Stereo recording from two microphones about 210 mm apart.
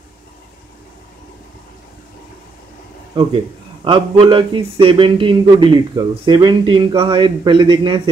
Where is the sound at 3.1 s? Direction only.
20° right (ahead or behind).